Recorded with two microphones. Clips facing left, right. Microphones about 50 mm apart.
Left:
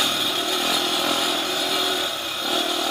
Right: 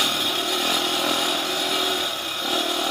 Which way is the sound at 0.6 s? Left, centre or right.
Right.